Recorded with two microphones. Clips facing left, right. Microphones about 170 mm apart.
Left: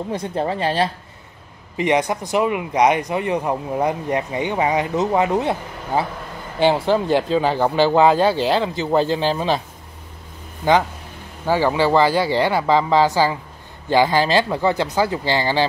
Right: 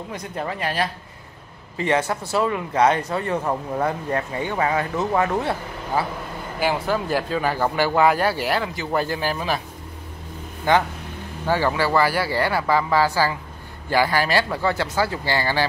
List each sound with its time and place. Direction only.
0.1 s speech: 30° left (ahead or behind)
1.8 s speech: 15° left (ahead or behind)
11.4 s speech: 15° left (ahead or behind)